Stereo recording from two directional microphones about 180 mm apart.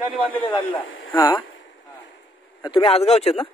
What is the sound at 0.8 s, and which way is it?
Radio, 90° left.